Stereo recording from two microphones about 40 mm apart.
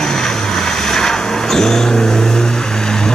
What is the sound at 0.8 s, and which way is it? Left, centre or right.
Vehicle, centre.